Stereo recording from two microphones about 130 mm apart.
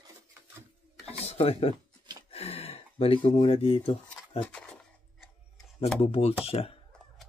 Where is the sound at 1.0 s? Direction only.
50° left (ahead or behind).